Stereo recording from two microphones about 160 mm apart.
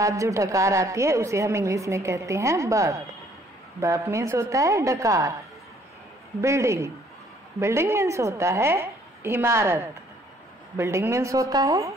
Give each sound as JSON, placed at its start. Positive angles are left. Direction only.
{"t": 0.0, "sound": "a woman's voice", "side_deg": -20}
{"t": 6.4, "sound": "a woman's voice", "side_deg": -20}